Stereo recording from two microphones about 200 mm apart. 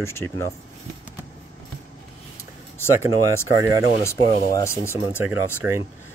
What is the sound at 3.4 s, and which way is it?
Speech, 15° right (ahead or behind).